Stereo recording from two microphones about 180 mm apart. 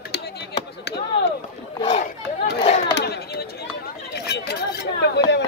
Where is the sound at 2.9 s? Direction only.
60° left (ahead or behind).